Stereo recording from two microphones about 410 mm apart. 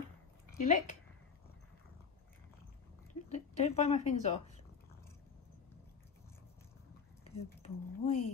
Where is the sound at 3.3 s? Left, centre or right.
Centre.